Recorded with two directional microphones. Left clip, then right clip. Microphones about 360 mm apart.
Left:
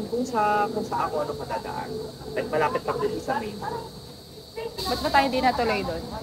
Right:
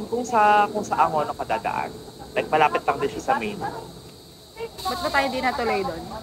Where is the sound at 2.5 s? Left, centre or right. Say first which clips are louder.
Right 5 dB; centre.